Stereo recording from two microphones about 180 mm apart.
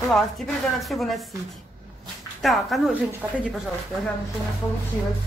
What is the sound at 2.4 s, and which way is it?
Speech, centre (ahead or behind).